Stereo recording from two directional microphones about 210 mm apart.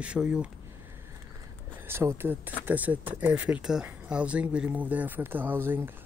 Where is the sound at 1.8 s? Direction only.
10° right (ahead or behind).